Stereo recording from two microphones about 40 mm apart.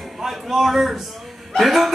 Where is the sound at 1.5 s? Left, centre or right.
Centre.